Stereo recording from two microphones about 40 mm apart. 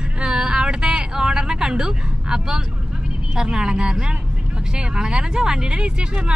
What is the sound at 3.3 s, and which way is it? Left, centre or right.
Speech, right.